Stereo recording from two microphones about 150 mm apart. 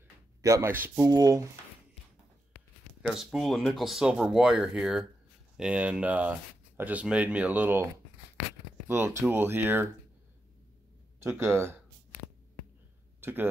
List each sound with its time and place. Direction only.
0.4 s speech: 20° right (ahead or behind)
3.0 s speech: 5° right (ahead or behind)
11.1 s speech: 20° right (ahead or behind)
13.2 s speech: 15° right (ahead or behind)